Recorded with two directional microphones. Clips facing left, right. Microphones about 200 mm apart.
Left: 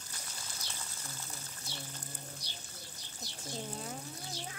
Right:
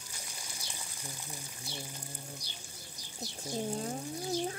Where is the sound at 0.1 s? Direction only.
10° right (ahead or behind).